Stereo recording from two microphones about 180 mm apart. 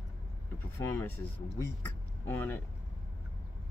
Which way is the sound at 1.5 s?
15° left (ahead or behind).